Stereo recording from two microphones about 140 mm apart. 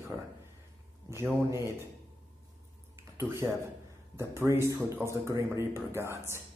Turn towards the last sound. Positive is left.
turn(degrees=-20)  # may be behind; listen again after turning